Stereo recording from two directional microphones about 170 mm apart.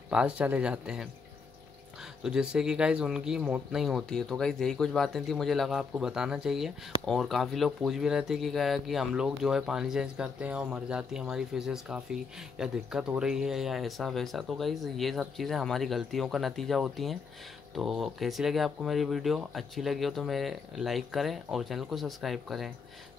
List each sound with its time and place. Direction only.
0.1 s speech: 5° right (ahead or behind)
2.2 s speech: 5° right (ahead or behind)